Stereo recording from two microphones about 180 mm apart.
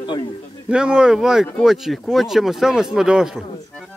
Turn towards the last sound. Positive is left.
turn(degrees=0)  # may be behind; listen again after turning